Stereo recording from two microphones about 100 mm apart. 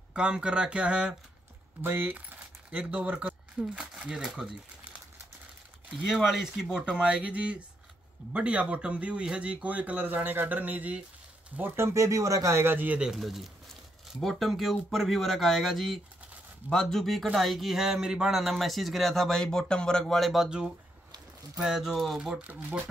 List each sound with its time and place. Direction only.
0.1 s a man's voice: 10° right (ahead or behind)
1.8 s speech: 20° right (ahead or behind); by 4.6 s 5° right (ahead or behind)
5.9 s a man's voice: 5° right (ahead or behind)
13.1 s a man's voice: centre (ahead or behind)
22.5 s speech: 20° right (ahead or behind)